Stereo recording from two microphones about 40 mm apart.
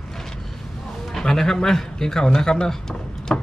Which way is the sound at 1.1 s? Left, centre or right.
Centre.